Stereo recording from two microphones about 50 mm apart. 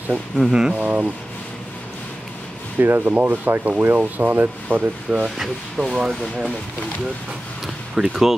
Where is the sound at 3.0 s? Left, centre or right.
Right.